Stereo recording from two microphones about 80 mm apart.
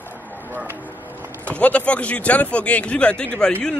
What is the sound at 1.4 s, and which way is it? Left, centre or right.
Speech, centre.